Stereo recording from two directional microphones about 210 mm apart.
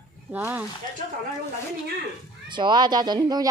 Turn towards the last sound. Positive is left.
turn(degrees=-20)  # may be behind; listen again after turning